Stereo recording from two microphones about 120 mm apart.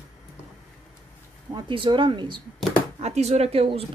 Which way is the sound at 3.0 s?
65° right (ahead or behind).